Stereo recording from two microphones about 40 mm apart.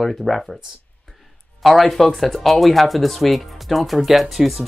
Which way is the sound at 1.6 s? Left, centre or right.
Centre.